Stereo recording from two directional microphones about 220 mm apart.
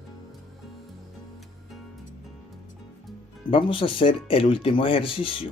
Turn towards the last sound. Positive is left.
turn(degrees=25)  # may be behind; listen again after turning